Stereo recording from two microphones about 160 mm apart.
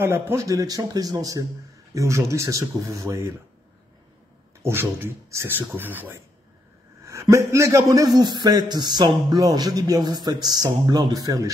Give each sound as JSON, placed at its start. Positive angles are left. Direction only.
{"t": 0.0, "sound": "a man's voice", "side_deg": -15}
{"t": 4.6, "sound": "a man's voice", "side_deg": -15}